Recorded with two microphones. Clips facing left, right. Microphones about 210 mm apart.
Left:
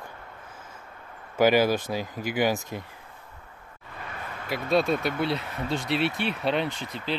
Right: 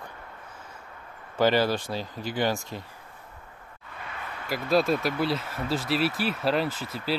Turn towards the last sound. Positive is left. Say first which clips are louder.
# right 1 dB
turn(degrees=-5)  # may be behind; listen again after turning